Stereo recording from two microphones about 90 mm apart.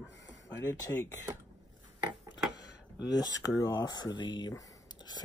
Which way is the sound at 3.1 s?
40° left (ahead or behind).